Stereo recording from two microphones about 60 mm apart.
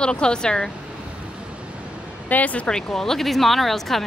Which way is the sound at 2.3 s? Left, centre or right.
Left.